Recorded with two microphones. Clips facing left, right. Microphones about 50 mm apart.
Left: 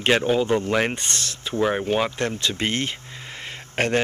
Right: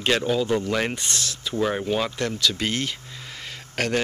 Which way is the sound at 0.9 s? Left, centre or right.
Left.